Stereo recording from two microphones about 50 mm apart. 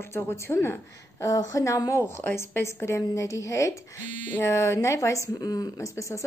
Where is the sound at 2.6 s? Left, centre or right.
Left.